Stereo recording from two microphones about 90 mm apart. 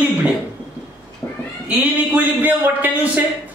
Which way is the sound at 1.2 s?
40° left (ahead or behind).